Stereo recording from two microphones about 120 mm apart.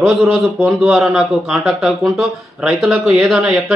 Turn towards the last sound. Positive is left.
turn(degrees=-5)  # may be behind; listen again after turning